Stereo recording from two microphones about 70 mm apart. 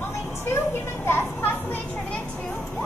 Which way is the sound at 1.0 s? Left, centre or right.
Left.